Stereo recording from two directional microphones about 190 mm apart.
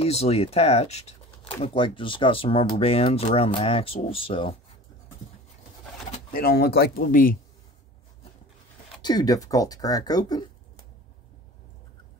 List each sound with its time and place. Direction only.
0.0 s speech: 35° left (ahead or behind)
6.1 s speech: 50° left (ahead or behind)
9.0 s speech: 20° left (ahead or behind)